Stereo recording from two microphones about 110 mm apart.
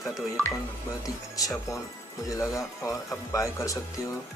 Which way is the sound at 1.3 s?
35° left (ahead or behind).